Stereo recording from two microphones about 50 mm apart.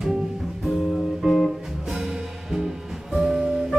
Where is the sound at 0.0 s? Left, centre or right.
Centre.